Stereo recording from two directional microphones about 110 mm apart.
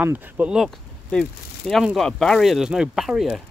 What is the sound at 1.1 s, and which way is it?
Speech, 5° left (ahead or behind).